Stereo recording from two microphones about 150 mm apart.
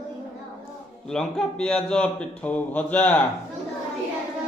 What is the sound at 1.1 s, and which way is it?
A man's voice, 5° left (ahead or behind).